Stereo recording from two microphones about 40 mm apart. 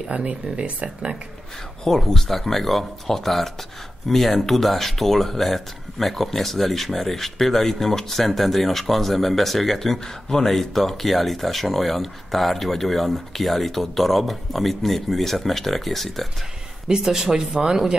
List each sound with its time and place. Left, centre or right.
0.1 s speech: right
1.9 s speech: centre
17.0 s speech: centre